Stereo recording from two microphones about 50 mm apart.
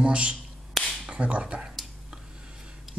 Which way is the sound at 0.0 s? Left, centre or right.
Right.